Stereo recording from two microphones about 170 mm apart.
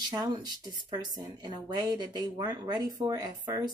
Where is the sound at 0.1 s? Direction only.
25° right (ahead or behind).